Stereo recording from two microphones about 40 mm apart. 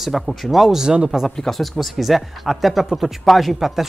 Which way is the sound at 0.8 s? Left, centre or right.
Right.